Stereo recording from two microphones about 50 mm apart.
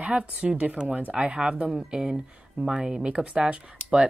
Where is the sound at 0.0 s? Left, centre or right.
Right.